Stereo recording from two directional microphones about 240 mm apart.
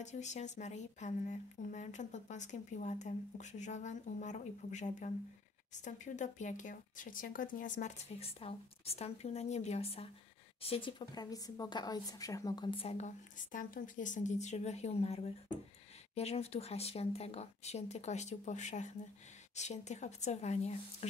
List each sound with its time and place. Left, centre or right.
0.0 s speech: left